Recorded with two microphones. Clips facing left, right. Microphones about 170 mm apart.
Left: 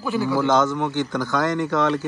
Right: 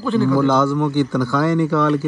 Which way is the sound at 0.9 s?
10° right (ahead or behind).